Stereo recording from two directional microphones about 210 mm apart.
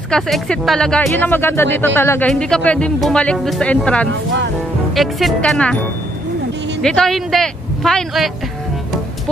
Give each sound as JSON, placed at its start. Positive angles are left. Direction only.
{"t": 0.1, "sound": "speech", "side_deg": 0}
{"t": 6.8, "sound": "speech", "side_deg": 0}